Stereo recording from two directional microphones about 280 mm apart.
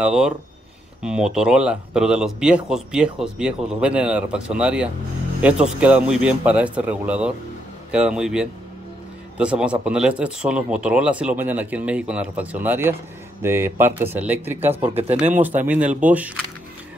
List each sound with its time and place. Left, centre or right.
0.0 s a man's voice: centre
14.7 s speech: right
15.3 s a man's voice: centre